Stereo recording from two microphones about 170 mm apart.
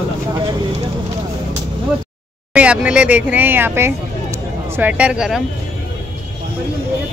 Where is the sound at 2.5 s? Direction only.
5° right (ahead or behind).